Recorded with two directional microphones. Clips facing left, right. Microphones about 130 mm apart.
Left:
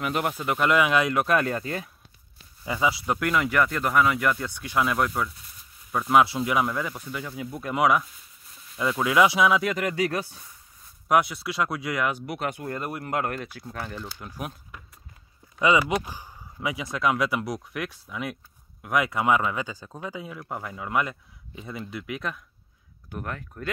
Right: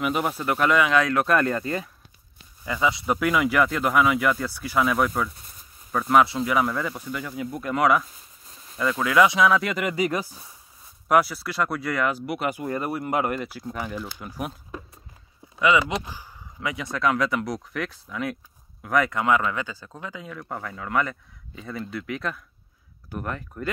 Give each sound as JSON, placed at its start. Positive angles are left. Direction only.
{"t": 0.0, "sound": "speech", "side_deg": -5}
{"t": 0.7, "sound": "speech", "side_deg": 15}
{"t": 1.0, "sound": "speech", "side_deg": 5}
{"t": 2.6, "sound": "speech", "side_deg": 20}
{"t": 3.1, "sound": "speech", "side_deg": -5}
{"t": 5.4, "sound": "a sound", "side_deg": -45}
{"t": 5.9, "sound": "speech", "side_deg": 5}
{"t": 8.7, "sound": "speech", "side_deg": 15}
{"t": 9.3, "sound": "speech", "side_deg": 5}
{"t": 16.1, "sound": "a sound", "side_deg": 15}
{"t": 16.8, "sound": "speech", "side_deg": 0}
{"t": 19.2, "sound": "speech", "side_deg": 20}